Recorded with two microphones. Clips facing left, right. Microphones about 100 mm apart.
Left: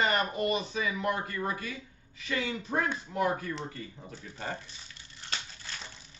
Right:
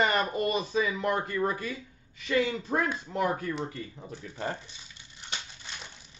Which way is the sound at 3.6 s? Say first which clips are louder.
Right 3 dB; 20° right (ahead or behind).